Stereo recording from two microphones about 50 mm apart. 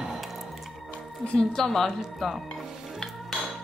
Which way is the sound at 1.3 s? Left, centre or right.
Centre.